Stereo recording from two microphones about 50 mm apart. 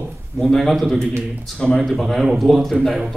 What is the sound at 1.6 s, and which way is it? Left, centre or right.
Speech, centre.